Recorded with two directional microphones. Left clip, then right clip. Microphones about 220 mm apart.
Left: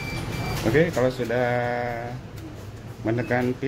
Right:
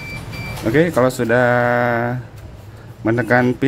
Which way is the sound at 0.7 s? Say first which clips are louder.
Right 7 dB; 25° right (ahead or behind).